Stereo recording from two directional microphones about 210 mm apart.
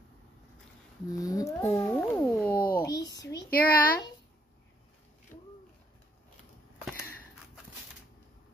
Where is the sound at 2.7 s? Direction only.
15° left (ahead or behind).